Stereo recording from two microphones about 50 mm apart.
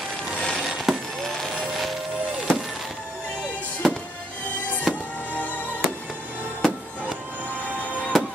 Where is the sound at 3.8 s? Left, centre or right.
Centre.